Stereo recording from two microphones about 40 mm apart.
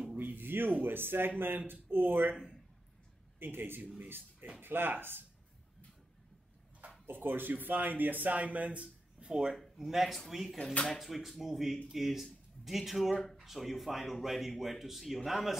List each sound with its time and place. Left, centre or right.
0.4 s speech: right
3.3 s speech: right
7.1 s speech: right
9.3 s speech: centre